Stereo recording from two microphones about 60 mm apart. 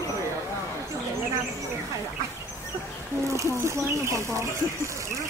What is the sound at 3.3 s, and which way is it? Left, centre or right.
Speech, right.